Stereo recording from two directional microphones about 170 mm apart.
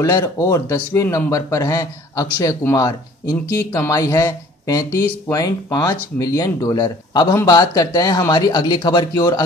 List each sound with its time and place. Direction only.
0.0 s speech: 20° left (ahead or behind)